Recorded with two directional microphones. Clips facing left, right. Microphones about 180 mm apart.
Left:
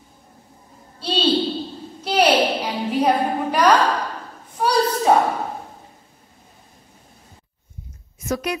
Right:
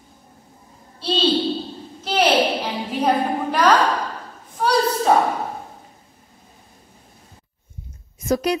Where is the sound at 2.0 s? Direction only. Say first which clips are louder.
Left 1 dB; 10° left (ahead or behind).